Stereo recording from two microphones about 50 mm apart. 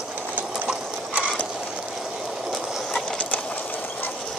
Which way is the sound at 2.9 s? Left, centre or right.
Centre.